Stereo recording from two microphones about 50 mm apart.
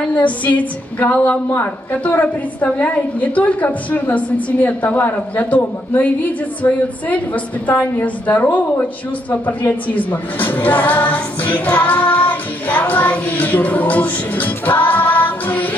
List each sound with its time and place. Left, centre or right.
0.1 s a woman's voice: left